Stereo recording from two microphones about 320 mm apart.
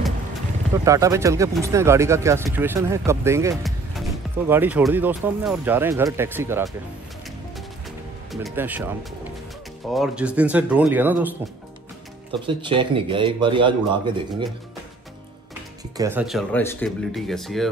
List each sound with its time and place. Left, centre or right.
0.8 s speech: centre
8.3 s speech: centre
9.9 s speech: centre
16.0 s speech: centre